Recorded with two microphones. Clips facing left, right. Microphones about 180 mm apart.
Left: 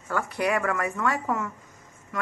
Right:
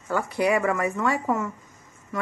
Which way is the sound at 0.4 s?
15° right (ahead or behind).